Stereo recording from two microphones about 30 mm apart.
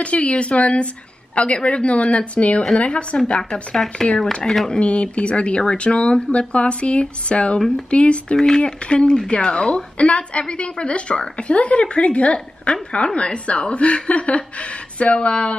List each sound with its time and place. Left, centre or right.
0.0 s a woman's voice: left
3.7 s speech: centre
4.1 s speech: left
4.6 s speech: left
8.4 s a woman's voice: left